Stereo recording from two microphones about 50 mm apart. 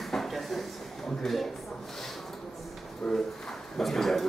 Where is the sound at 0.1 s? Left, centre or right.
Centre.